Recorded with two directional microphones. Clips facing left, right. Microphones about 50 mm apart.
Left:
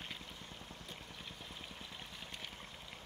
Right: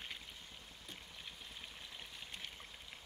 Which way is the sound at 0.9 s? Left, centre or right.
Centre.